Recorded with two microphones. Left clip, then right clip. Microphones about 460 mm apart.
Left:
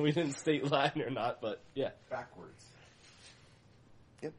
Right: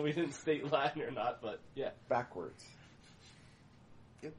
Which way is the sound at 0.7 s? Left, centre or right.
Left.